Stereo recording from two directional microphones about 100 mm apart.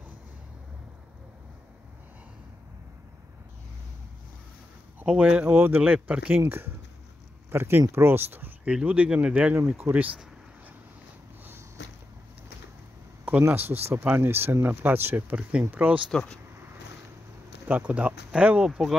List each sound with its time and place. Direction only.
5.0 s speech: 10° right (ahead or behind)
13.2 s speech: 20° right (ahead or behind)
16.1 s speech: 5° left (ahead or behind)
17.6 s speech: 15° right (ahead or behind)